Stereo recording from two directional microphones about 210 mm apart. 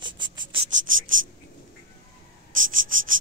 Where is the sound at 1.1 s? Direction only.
35° right (ahead or behind).